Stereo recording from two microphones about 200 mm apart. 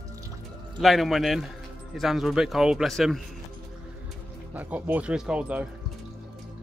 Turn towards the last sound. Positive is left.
turn(degrees=-5)  # may be behind; listen again after turning